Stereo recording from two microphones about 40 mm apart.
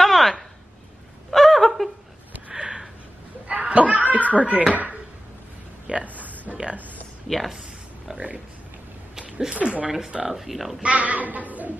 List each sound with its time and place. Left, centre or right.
0.0 s a sound: centre
3.4 s a sound: right
4.1 s speech: right
5.9 s speech: right
9.6 s speech: right
9.8 s speech: centre
10.8 s speech: right